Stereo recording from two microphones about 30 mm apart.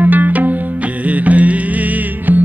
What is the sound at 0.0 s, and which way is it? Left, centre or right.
Music, right.